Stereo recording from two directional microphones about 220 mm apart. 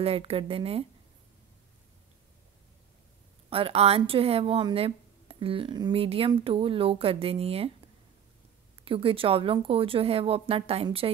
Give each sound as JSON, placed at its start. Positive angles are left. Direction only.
{"t": 0.0, "sound": "speech", "side_deg": -25}
{"t": 3.4, "sound": "speech", "side_deg": -25}
{"t": 8.8, "sound": "speech", "side_deg": -25}